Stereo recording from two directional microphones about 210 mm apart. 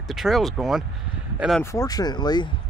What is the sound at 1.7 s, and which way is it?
Speech, 20° left (ahead or behind).